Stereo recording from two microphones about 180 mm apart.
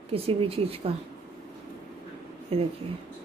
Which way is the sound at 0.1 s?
30° right (ahead or behind).